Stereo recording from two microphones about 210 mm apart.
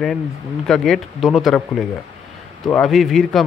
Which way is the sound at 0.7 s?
Centre (ahead or behind).